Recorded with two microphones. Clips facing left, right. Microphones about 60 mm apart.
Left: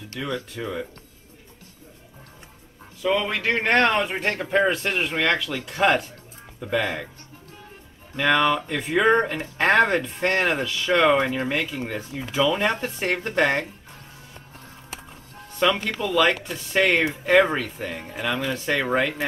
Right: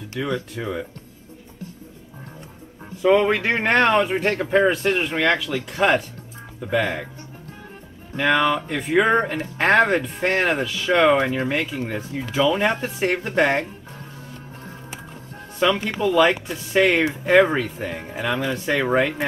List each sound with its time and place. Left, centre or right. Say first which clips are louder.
0.2 s speech: right 3 dB; centre
3.0 s a man's voice: right 6 dB; right
3.7 s speech: right 3 dB; centre
8.2 s speech: right 1 dB; centre
15.8 s speech: right 3 dB; centre